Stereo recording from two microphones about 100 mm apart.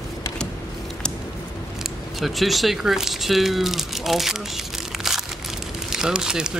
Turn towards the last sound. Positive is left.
turn(degrees=-5)  # may be behind; listen again after turning